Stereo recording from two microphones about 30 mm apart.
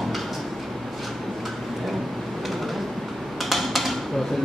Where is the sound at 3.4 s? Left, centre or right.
Centre.